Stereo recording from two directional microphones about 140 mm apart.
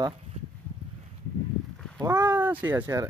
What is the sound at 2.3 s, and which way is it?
Speech, 15° right (ahead or behind).